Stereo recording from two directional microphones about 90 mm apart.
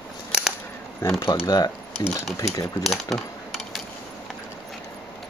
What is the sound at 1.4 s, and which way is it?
Speech, 50° left (ahead or behind).